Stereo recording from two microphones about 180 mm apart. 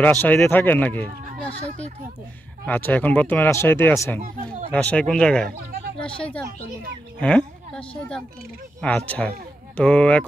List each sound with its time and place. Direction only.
0.0 s speech: 10° left (ahead or behind)
2.6 s a woman's voice: 10° left (ahead or behind)